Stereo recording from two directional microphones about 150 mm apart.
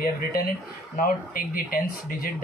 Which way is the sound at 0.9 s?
70° left (ahead or behind).